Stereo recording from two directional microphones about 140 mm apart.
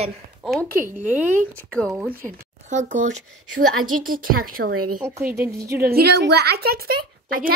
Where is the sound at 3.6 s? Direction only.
90° right.